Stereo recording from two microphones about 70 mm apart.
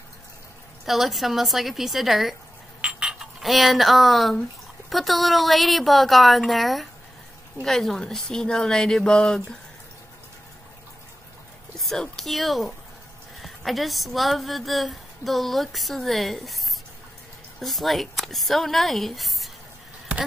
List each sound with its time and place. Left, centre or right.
0.8 s speech: centre
2.8 s a sound: centre
3.2 s speech: centre
11.9 s speech: centre